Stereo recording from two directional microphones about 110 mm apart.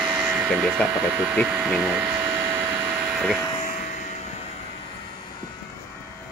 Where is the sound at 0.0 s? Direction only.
10° right (ahead or behind).